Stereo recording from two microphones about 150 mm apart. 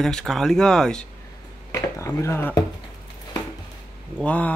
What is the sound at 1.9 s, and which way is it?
Speech, 20° left (ahead or behind).